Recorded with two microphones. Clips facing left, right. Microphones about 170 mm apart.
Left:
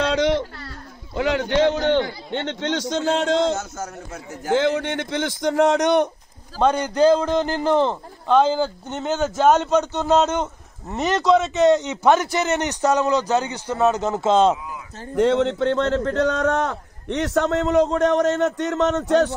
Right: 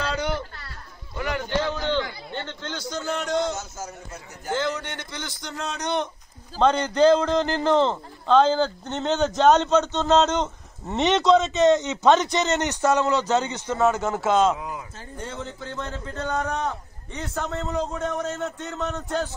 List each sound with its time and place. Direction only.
0.0 s a sound: 90° left
1.1 s a man's voice: 90° left; by 6.0 s 75° left (ahead or behind)
6.6 s a man's voice: 10° left (ahead or behind)
15.1 s a man's voice: 80° left